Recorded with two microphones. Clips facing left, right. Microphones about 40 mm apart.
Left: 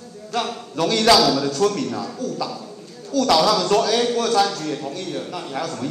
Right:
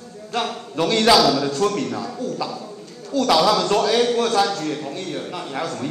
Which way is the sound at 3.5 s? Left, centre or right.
Right.